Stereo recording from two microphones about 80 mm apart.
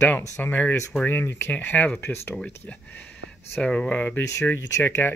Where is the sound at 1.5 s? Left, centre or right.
Centre.